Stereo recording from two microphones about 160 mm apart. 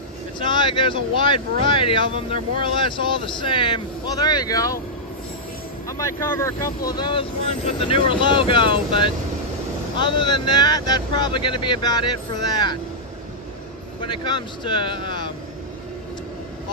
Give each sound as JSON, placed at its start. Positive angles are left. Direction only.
{"t": 0.6, "sound": "speech", "side_deg": 30}
{"t": 5.9, "sound": "speech", "side_deg": 20}
{"t": 6.9, "sound": "speech", "side_deg": 30}
{"t": 14.0, "sound": "speech", "side_deg": 30}